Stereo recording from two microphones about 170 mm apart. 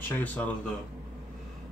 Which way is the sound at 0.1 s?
10° left (ahead or behind).